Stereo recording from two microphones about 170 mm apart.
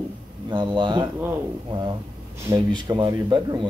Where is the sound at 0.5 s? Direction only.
30° right (ahead or behind).